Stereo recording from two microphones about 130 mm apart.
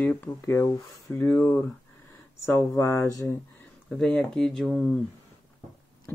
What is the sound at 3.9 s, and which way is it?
Speech, 5° left (ahead or behind).